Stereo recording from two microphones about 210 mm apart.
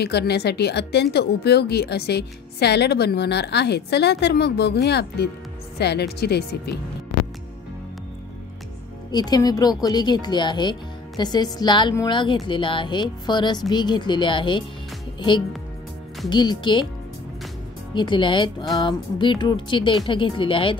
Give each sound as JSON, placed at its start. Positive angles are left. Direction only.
{"t": 0.0, "sound": "a woman's voice", "side_deg": 50}
{"t": 9.1, "sound": "a woman's voice", "side_deg": 20}
{"t": 17.9, "sound": "speech", "side_deg": 20}